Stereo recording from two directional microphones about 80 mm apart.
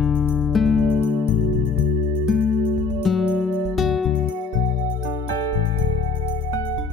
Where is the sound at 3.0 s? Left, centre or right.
Centre.